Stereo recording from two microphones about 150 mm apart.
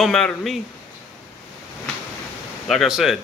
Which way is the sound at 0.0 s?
5° left (ahead or behind).